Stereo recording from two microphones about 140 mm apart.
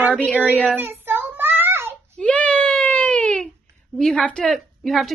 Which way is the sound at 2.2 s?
10° left (ahead or behind).